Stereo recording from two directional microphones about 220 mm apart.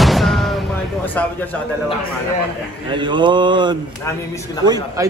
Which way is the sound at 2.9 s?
20° right (ahead or behind).